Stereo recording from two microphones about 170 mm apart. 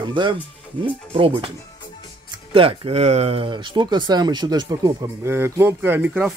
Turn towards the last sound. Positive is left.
turn(degrees=-5)  # may be behind; listen again after turning